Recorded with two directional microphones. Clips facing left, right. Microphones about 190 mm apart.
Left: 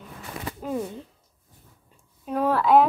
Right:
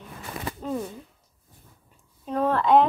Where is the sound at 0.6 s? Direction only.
10° left (ahead or behind).